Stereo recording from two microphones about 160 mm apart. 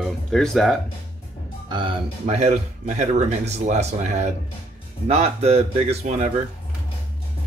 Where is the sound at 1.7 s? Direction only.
30° right (ahead or behind).